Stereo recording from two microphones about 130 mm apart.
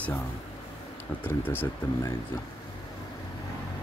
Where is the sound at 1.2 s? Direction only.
15° left (ahead or behind).